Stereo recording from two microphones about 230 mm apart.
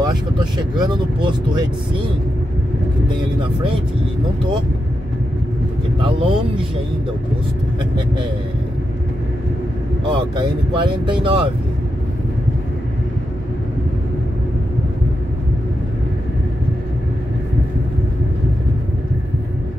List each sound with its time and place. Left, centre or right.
0.0 s speech: centre
5.9 s speech: right
10.0 s speech: right